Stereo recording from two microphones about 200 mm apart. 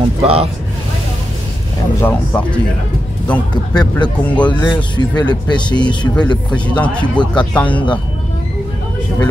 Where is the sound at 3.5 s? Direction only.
20° left (ahead or behind).